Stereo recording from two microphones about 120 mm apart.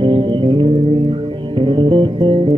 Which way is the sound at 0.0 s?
40° right (ahead or behind).